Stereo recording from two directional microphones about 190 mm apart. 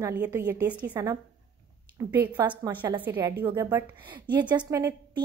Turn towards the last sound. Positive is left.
turn(degrees=-15)  # may be behind; listen again after turning